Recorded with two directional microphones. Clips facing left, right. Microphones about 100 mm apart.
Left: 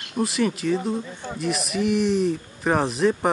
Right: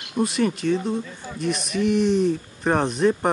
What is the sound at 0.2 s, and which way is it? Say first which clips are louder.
Speech: right 1 dB; centre (ahead or behind).